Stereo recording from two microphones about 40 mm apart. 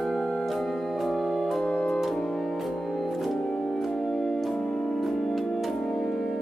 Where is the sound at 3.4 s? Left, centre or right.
Centre.